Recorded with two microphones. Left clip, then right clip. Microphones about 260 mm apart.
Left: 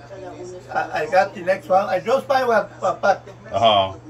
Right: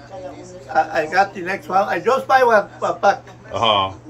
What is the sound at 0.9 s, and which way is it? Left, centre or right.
A man's voice, centre.